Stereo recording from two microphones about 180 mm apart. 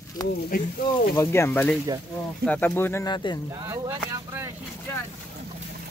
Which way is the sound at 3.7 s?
15° right (ahead or behind).